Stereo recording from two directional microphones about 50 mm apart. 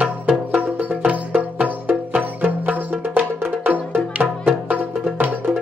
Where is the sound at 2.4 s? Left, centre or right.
Right.